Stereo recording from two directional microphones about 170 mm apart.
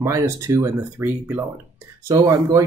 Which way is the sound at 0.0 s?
20° right (ahead or behind).